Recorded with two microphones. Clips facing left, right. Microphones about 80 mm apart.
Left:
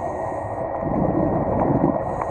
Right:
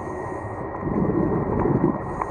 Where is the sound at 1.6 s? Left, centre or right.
Centre.